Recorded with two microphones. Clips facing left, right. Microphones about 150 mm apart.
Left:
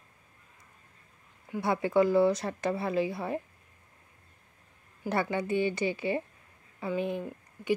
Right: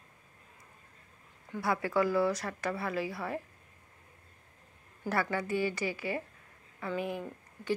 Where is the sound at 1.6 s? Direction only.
25° left (ahead or behind).